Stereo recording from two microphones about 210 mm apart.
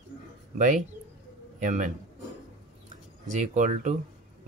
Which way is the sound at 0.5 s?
35° right (ahead or behind).